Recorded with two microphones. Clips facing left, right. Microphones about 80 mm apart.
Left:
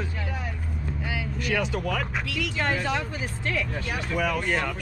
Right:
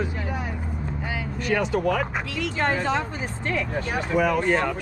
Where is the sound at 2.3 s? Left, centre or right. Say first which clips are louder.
Right 2 dB; right.